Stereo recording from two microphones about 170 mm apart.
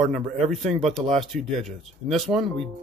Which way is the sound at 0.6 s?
40° right (ahead or behind).